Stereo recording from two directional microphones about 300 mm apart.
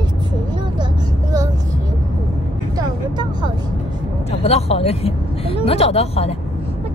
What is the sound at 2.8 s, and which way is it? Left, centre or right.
Music, centre.